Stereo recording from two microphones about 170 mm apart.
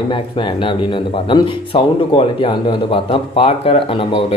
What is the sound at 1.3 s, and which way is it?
A man's voice, 25° left (ahead or behind).